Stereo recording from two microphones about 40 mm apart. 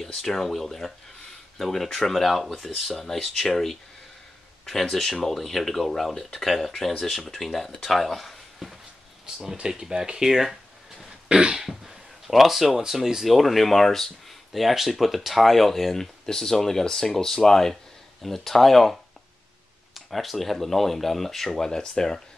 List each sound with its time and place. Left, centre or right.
0.0 s speech: centre
2.7 s speech: centre
3.0 s speech: centre
9.6 s speech: centre
11.2 s cough: right
11.5 s throat clearing: centre
12.3 s speech: centre